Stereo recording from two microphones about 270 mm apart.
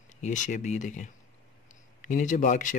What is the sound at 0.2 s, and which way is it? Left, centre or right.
Speech, left.